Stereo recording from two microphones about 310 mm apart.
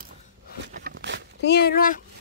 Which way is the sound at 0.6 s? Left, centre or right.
Right.